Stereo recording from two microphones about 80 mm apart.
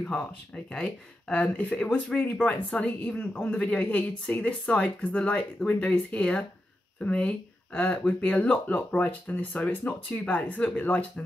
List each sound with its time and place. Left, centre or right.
1.3 s speech: centre